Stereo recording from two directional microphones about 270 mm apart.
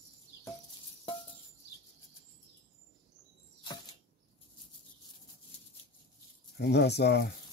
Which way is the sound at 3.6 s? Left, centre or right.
Centre.